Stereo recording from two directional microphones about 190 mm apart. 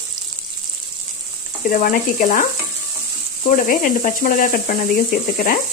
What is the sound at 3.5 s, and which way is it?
Speech, 45° left (ahead or behind).